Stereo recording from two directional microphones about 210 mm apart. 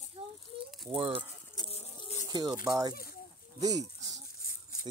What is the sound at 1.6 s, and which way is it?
Patter, 25° left (ahead or behind).